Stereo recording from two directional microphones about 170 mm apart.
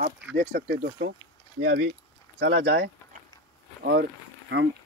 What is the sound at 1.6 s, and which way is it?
Speech, 90° right.